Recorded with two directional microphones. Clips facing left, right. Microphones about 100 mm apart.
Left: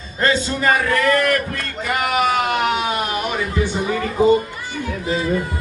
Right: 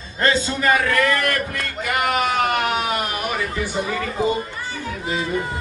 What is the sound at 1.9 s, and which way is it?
Speech, centre (ahead or behind).